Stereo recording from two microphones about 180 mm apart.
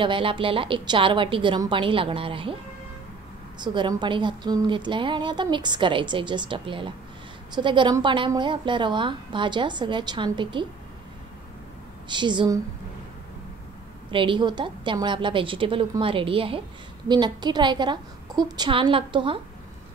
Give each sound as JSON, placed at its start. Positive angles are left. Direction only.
{"t": 0.0, "sound": "a woman's voice", "side_deg": -30}
{"t": 3.6, "sound": "a woman's voice", "side_deg": -25}
{"t": 12.1, "sound": "a woman's voice", "side_deg": -25}
{"t": 14.1, "sound": "a woman's voice", "side_deg": -25}